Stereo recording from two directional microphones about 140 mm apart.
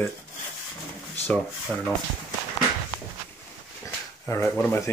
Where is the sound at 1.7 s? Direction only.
10° left (ahead or behind).